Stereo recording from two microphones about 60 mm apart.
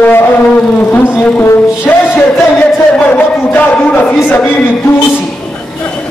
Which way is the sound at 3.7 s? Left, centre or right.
Left.